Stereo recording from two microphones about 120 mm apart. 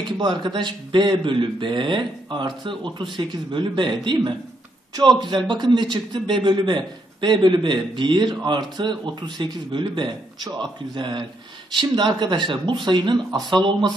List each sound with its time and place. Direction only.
0.2 s a man's voice: 40° right (ahead or behind)